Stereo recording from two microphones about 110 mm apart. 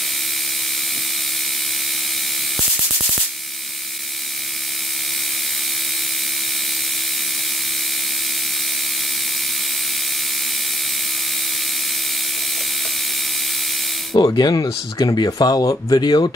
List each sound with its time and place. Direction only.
14.1 s speech: 40° left (ahead or behind)